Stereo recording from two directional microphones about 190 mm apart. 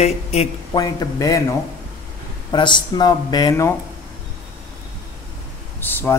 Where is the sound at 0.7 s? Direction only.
20° left (ahead or behind).